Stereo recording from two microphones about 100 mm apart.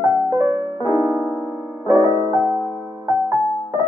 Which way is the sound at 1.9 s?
30° right (ahead or behind).